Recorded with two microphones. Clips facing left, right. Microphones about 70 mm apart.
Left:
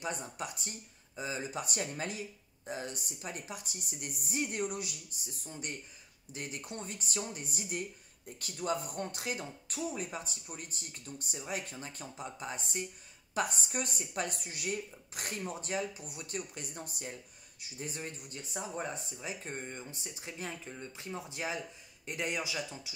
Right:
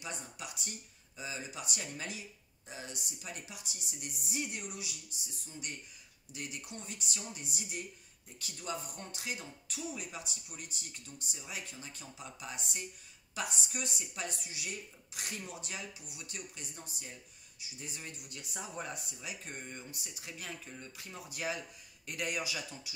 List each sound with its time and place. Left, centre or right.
0.0 s speech: left